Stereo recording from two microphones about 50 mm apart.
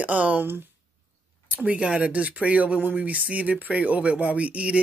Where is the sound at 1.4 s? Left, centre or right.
Right.